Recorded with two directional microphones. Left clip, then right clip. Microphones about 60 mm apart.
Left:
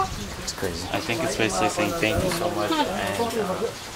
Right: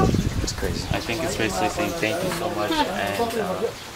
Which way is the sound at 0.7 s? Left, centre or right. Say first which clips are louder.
Even; centre.